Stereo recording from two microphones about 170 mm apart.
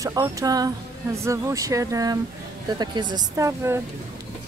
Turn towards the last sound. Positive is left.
turn(degrees=-15)  # may be behind; listen again after turning